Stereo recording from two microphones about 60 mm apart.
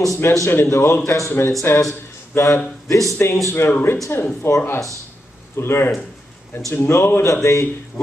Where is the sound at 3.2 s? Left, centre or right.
Left.